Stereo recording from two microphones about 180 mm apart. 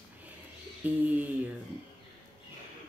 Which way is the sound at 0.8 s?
10° right (ahead or behind).